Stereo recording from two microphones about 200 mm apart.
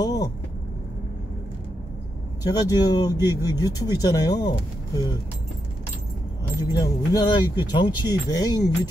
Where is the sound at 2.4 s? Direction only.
20° left (ahead or behind).